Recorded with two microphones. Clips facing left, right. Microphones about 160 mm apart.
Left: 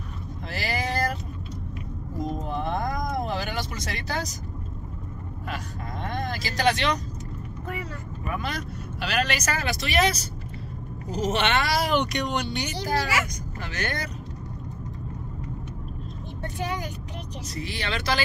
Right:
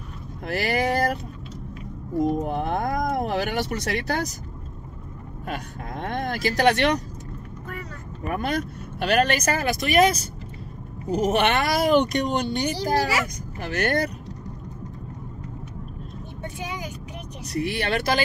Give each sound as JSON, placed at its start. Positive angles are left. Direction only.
{"t": 0.5, "sound": "vehicle", "side_deg": -55}
{"t": 2.1, "sound": "vehicle", "side_deg": -60}
{"t": 5.5, "sound": "a sound", "side_deg": -55}
{"t": 8.3, "sound": "speech", "side_deg": -50}
{"t": 12.7, "sound": "a child's voice", "side_deg": -35}
{"t": 13.7, "sound": "speech", "side_deg": -60}
{"t": 16.4, "sound": "speech", "side_deg": -10}
{"t": 17.5, "sound": "speech", "side_deg": -60}